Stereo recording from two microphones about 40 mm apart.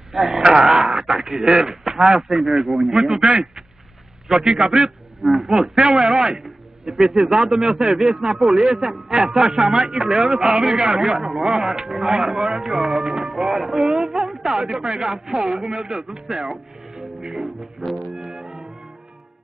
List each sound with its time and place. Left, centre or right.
0.1 s a man's voice: centre
0.4 s speech: centre
0.7 s speech: centre
3.1 s a man's voice: centre
13.3 s music: centre
14.6 s speech: centre
17.4 s music: centre